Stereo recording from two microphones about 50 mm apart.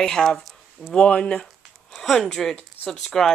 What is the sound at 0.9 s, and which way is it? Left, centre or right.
Speech, left.